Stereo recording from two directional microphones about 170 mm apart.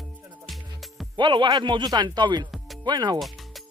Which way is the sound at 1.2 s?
25° right (ahead or behind).